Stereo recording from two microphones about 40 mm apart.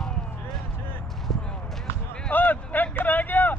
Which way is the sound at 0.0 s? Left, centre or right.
Centre.